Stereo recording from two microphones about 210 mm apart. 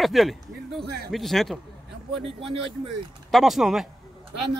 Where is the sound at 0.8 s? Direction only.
50° right (ahead or behind).